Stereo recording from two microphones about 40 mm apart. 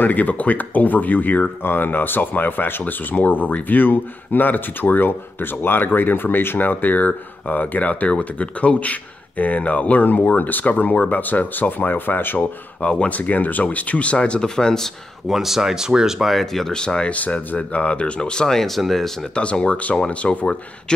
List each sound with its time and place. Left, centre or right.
0.0 s speech: left
1.6 s speech: left
1.9 s speech: left
6.6 s speech: left
7.9 s speech: left
12.4 s speech: left
13.2 s speech: left
14.5 s speech: centre
15.2 s speech: centre
16.6 s speech: left
17.1 s speech: left; by 19.1 s centre
19.3 s speech: left